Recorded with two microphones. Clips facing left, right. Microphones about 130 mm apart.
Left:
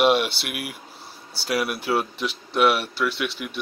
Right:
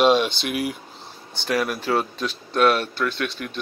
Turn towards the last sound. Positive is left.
turn(degrees=10)  # may be behind; listen again after turning